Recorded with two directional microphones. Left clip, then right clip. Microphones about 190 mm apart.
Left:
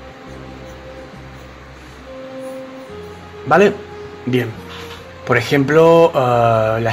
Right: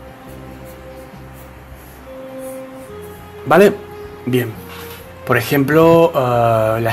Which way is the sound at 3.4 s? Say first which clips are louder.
Right 2 dB; 15° right (ahead or behind).